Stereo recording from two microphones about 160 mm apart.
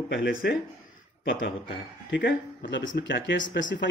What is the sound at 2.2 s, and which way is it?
Speech, 90° left.